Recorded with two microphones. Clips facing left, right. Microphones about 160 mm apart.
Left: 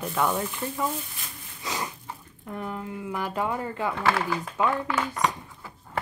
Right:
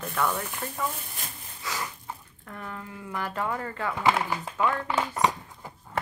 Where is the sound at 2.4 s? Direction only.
15° left (ahead or behind).